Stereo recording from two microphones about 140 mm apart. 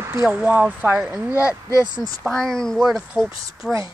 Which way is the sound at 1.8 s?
30° right (ahead or behind).